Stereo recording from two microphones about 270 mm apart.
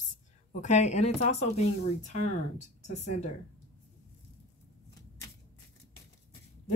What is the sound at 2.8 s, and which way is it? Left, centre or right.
Speech, left.